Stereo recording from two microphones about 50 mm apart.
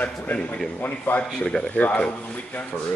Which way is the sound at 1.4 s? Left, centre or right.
Centre.